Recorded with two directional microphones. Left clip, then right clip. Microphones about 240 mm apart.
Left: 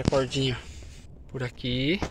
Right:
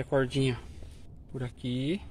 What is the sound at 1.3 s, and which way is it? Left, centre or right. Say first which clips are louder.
Speech: left 6 dB; centre.